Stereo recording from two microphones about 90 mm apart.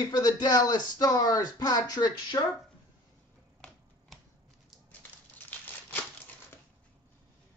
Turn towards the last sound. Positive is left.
turn(degrees=20)  # may be behind; listen again after turning